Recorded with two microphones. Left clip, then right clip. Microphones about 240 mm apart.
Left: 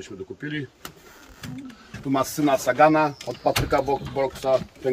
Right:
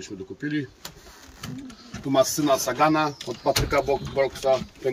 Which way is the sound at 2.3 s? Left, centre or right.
Centre.